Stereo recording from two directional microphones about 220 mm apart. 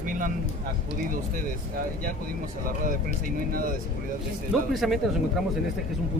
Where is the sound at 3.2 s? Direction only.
40° right (ahead or behind).